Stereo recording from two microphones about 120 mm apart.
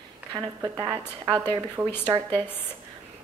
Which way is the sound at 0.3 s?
25° right (ahead or behind).